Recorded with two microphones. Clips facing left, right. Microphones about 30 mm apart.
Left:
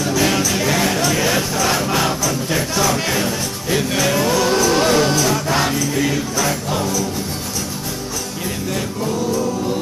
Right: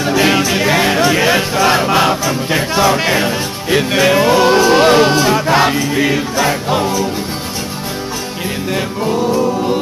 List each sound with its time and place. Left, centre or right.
0.0 s speech: right
8.7 s music: right